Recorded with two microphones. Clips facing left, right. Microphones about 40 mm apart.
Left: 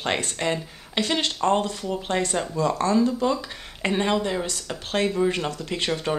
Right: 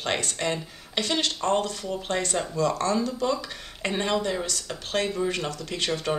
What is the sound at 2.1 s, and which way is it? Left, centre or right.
Speech, centre.